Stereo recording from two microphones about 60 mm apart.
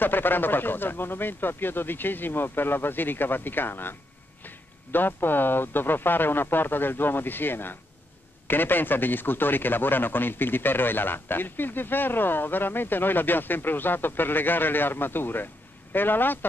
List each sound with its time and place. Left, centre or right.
0.0 s a man's voice: left